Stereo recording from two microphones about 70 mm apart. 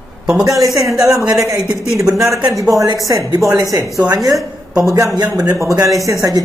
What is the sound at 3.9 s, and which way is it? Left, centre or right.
A man's voice, right.